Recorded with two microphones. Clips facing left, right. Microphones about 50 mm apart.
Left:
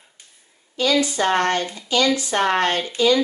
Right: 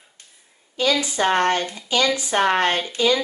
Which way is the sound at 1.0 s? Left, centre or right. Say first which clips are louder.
Even; centre.